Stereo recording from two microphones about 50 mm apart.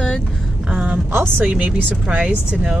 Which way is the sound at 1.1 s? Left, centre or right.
Right.